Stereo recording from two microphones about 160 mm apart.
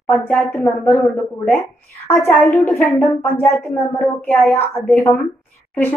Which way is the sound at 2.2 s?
15° left (ahead or behind).